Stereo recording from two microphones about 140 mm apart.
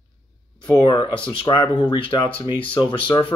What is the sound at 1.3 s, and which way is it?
Speech, 40° left (ahead or behind).